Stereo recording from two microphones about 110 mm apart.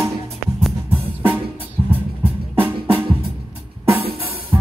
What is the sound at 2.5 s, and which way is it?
Music, 20° right (ahead or behind).